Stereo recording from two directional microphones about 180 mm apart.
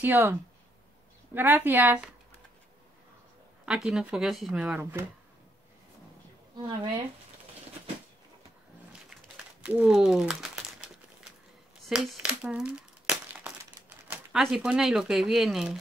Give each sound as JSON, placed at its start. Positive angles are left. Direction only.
{"t": 0.0, "sound": "a woman's voice", "side_deg": -10}
{"t": 3.6, "sound": "a woman's voice", "side_deg": -5}
{"t": 6.5, "sound": "speech", "side_deg": -25}
{"t": 9.1, "sound": "crumpling", "side_deg": -5}
{"t": 11.9, "sound": "crumpling", "side_deg": -5}
{"t": 13.7, "sound": "speech", "side_deg": -10}